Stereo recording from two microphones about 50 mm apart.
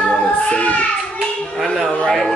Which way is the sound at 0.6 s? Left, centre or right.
Left.